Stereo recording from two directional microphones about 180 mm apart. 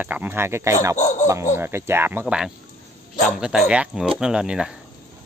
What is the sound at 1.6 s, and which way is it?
Speech, 15° right (ahead or behind).